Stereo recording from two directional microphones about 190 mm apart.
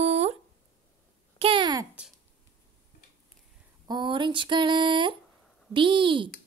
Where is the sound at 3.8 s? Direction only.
25° right (ahead or behind).